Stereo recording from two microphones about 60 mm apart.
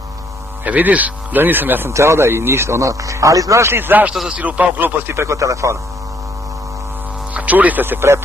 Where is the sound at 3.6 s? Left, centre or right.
Right.